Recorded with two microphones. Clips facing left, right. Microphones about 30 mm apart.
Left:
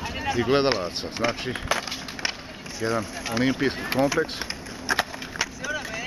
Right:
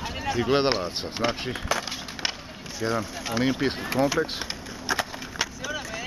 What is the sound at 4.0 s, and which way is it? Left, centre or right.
Speech, left.